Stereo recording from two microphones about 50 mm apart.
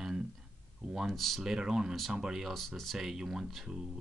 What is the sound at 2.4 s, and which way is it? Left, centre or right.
Speech, centre.